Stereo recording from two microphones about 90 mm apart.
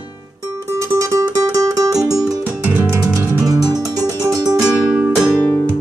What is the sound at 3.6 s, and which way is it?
Music, 45° right (ahead or behind).